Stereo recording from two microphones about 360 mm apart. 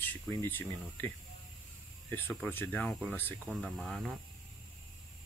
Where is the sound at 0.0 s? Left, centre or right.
Centre.